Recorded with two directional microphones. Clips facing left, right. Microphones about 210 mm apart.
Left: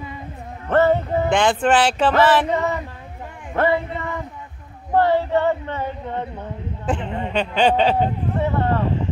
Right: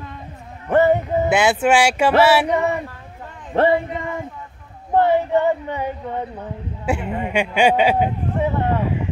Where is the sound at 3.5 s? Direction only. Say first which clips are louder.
Right 3 dB; 30° right (ahead or behind).